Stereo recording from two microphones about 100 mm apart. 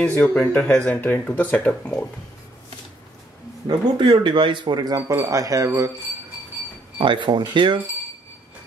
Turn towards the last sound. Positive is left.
turn(degrees=-55)  # may be behind; listen again after turning